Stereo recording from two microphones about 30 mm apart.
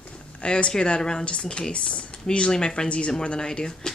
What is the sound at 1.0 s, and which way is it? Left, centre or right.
Speech, left.